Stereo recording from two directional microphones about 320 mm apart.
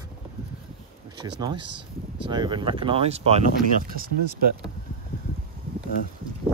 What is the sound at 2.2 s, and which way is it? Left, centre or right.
Speech, centre.